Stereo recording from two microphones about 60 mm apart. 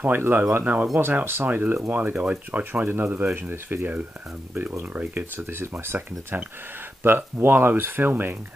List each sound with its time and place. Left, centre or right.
0.0 s speech: right